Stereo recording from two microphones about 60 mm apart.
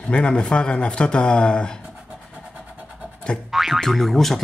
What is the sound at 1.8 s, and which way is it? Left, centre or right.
Vehicle, centre.